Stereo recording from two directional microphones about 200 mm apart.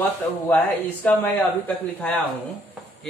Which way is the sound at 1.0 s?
10° left (ahead or behind).